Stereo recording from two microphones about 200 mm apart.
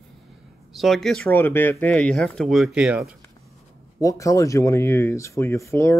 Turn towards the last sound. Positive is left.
turn(degrees=15)  # may be behind; listen again after turning